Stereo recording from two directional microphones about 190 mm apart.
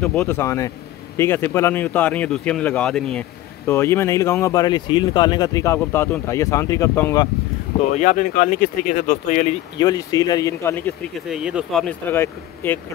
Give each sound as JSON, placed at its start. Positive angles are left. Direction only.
{"t": 0.0, "sound": "speech", "side_deg": 10}
{"t": 7.9, "sound": "speech", "side_deg": 40}
{"t": 9.8, "sound": "speech", "side_deg": 20}
{"t": 11.2, "sound": "speech", "side_deg": -5}
{"t": 12.1, "sound": "speech", "side_deg": 10}